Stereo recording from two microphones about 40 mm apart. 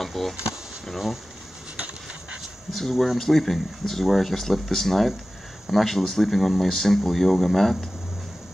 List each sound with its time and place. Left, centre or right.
0.0 s a sound: centre
0.8 s speech: centre
2.7 s speech: centre